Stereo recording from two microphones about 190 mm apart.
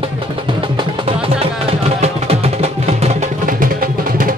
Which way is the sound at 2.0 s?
35° right (ahead or behind).